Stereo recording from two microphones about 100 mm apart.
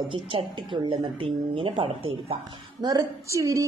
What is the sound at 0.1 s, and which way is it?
Speech, 60° right (ahead or behind).